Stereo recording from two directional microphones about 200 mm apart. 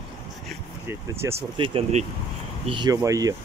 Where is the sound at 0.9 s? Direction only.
15° right (ahead or behind).